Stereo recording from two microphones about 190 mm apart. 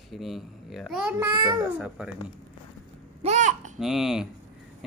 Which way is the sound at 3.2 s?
40° right (ahead or behind).